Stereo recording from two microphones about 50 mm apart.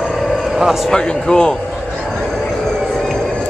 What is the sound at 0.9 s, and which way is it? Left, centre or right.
Speech, centre.